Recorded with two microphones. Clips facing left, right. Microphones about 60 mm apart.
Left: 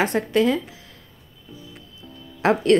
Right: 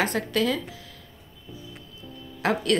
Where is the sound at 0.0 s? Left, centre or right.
Left.